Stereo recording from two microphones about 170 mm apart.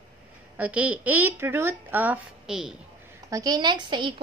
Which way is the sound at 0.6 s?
10° right (ahead or behind).